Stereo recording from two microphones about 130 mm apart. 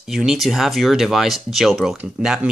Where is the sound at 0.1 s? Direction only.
5° right (ahead or behind).